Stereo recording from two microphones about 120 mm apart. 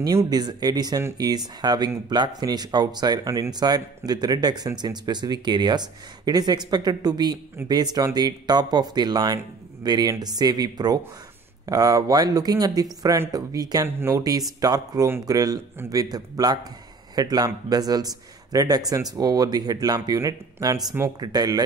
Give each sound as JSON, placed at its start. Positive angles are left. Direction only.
{"t": 0.0, "sound": "speech", "side_deg": -30}
{"t": 13.8, "sound": "speech", "side_deg": -20}